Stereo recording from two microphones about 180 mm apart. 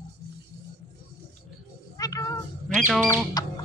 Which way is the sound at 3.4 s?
20° left (ahead or behind).